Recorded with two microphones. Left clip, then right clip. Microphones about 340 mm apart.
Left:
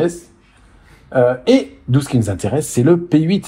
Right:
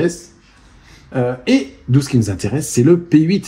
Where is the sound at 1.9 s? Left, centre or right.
Centre.